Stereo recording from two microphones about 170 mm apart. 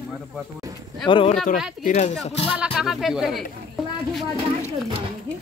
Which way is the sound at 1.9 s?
45° left (ahead or behind).